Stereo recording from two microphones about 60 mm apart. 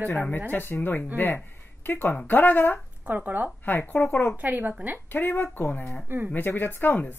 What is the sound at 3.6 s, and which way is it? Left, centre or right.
Speech, left.